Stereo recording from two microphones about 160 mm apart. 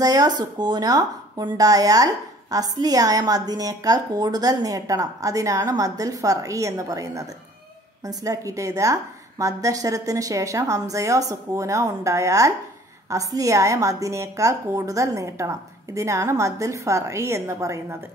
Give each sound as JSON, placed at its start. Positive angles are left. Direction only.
{"t": 0.0, "sound": "a woman's voice", "side_deg": -25}